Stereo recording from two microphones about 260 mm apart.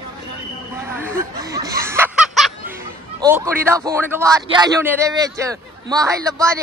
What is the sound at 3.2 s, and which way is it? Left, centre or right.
A man's voice, centre.